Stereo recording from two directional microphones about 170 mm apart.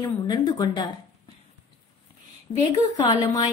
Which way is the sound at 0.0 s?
25° left (ahead or behind).